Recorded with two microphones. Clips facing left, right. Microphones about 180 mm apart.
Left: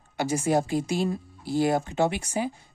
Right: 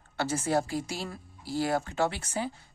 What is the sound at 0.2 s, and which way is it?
Speech, 15° left (ahead or behind).